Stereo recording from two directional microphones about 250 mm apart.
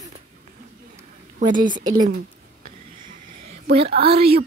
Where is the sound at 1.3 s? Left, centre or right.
Right.